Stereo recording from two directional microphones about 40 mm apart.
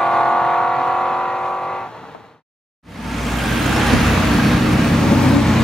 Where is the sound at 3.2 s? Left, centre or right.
Centre.